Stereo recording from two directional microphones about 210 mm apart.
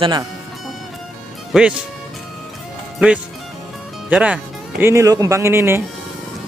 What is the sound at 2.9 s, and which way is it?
Speech, 5° right (ahead or behind).